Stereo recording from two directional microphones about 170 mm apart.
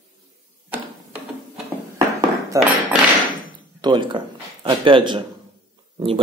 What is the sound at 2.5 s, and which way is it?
Speech, 20° right (ahead or behind).